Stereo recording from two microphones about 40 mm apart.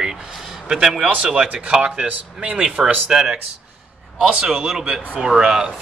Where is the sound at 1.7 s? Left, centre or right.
Right.